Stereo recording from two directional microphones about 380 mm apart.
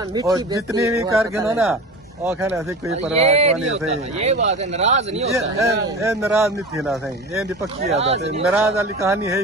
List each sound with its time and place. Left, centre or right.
0.1 s speech: centre
7.9 s speech: centre